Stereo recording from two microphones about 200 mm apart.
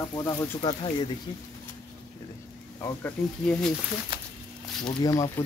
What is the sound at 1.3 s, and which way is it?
Speech, 25° left (ahead or behind).